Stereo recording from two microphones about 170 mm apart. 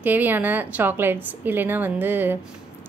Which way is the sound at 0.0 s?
10° right (ahead or behind).